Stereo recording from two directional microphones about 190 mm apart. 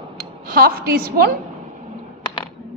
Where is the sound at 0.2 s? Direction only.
50° right (ahead or behind).